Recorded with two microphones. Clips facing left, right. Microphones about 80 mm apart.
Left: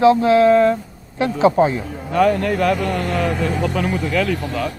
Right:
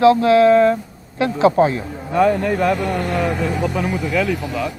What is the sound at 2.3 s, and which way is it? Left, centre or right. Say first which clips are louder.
Speech: even; centre.